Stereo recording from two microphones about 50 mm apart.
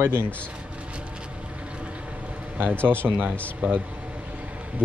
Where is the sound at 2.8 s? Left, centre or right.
Right.